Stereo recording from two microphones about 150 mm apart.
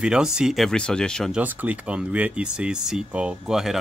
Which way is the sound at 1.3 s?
10° right (ahead or behind).